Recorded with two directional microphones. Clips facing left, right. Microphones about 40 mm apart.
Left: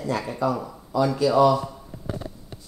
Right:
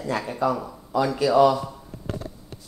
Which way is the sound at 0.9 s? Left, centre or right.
Right.